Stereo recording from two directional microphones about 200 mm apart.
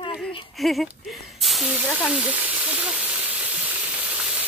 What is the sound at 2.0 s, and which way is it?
Sizzle, 5° right (ahead or behind).